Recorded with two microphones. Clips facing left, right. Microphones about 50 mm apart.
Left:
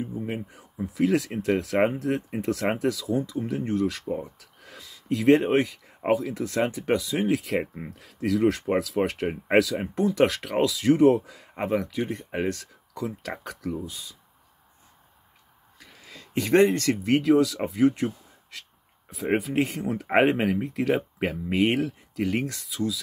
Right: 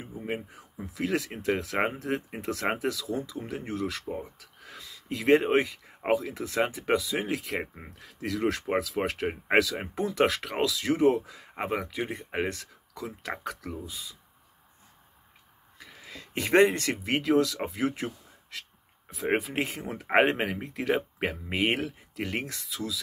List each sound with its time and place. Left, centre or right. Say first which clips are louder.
0.0 s speech: left 3 dB; centre
11.6 s speech: left 4 dB; centre
12.9 s speech: left 4 dB; centre
16.1 s speech: left 3 dB; right
17.2 s speech: left 4 dB; centre
21.5 s speech: left 5 dB; right
22.1 s speech: left 7 dB; centre